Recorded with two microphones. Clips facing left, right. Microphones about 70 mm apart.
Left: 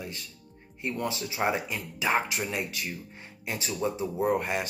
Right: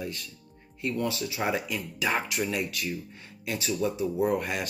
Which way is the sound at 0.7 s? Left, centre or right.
Left.